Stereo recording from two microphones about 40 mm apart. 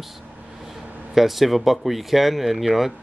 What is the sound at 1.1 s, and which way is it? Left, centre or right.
Speech, centre.